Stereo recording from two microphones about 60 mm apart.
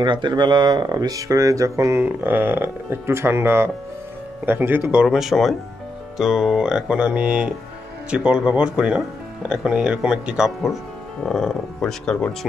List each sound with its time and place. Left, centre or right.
0.7 s speech: right
2.0 s speech: right
5.0 s speech: centre
11.8 s speech: centre